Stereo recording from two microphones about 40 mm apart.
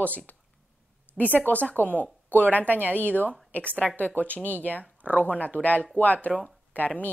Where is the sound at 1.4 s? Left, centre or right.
Left.